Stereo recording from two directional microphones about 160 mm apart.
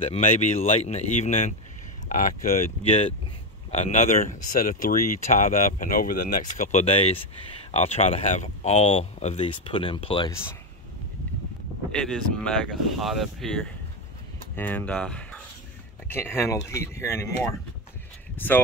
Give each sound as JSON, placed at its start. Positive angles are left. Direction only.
{"t": 0.0, "sound": "speech", "side_deg": 45}
{"t": 2.0, "sound": "speech", "side_deg": 55}
{"t": 11.9, "sound": "speech", "side_deg": 5}
{"t": 14.5, "sound": "speech", "side_deg": 10}
{"t": 18.3, "sound": "a sound", "side_deg": 10}